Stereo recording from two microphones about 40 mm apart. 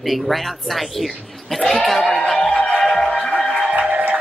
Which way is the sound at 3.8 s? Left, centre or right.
Right.